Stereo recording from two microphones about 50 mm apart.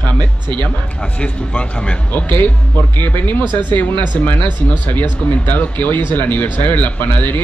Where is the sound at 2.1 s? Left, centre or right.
Left.